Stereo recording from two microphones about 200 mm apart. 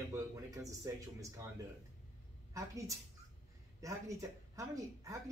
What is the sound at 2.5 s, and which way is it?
Speech, 15° right (ahead or behind).